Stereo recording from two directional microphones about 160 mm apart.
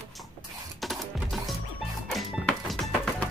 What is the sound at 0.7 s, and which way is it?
Music, centre (ahead or behind).